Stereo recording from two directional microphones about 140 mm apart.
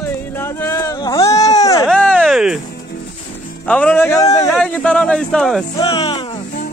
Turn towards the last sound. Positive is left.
turn(degrees=35)  # may be behind; listen again after turning